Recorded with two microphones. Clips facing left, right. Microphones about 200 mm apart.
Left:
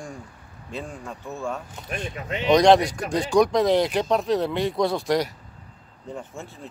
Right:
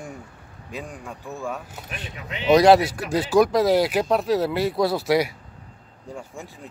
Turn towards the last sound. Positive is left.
turn(degrees=-10)  # may be behind; listen again after turning